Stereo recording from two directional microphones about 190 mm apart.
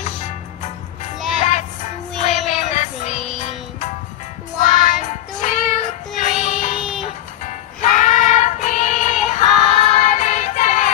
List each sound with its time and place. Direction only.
1.4 s music: 40° left (ahead or behind)
7.8 s child singing: 40° left (ahead or behind)